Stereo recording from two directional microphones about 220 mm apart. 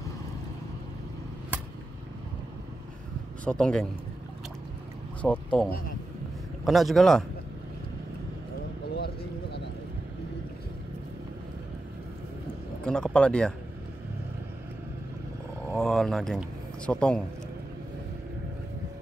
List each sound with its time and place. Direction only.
3.4 s speech: 5° left (ahead or behind)
5.2 s speech: 5° left (ahead or behind)
8.9 s a sound: 50° left (ahead or behind)
12.8 s speech: 5° left (ahead or behind)
15.8 s speech: centre (ahead or behind)